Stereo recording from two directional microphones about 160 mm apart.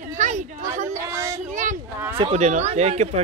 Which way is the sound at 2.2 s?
45° right (ahead or behind).